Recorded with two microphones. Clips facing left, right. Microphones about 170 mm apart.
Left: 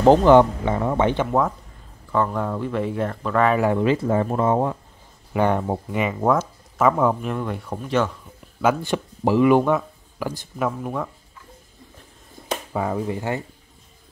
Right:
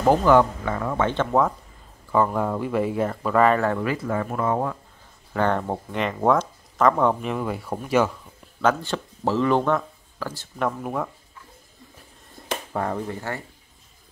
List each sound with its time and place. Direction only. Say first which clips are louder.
0.0 s speech: left 4 dB; 25° left (ahead or behind)
2.1 s speech: right 1 dB; 5° right (ahead or behind)
3.5 s speech: left 4 dB; 15° left (ahead or behind)
5.3 s speech: left 2 dB; 15° left (ahead or behind); by 8.1 s 10° right (ahead or behind)
8.5 s speech: left 2 dB; 10° left (ahead or behind)
10.8 s speech: even; centre (ahead or behind)
12.7 s speech: left 3 dB; 5° left (ahead or behind)